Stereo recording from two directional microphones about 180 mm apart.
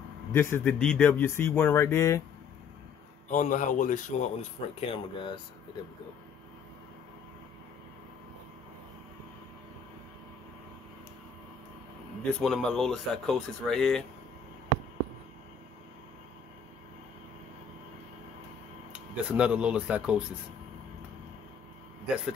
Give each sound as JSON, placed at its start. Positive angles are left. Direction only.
{"t": 0.3, "sound": "speech", "side_deg": 15}
{"t": 3.3, "sound": "speech", "side_deg": 45}
{"t": 12.2, "sound": "speech", "side_deg": 5}
{"t": 19.3, "sound": "speech", "side_deg": -5}
{"t": 22.0, "sound": "speech", "side_deg": -5}